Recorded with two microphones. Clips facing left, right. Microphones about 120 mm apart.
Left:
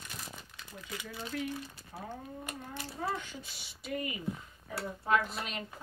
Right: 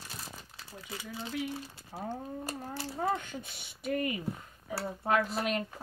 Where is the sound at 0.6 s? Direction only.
30° right (ahead or behind).